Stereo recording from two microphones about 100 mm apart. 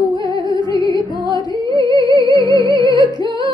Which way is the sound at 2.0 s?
50° right (ahead or behind).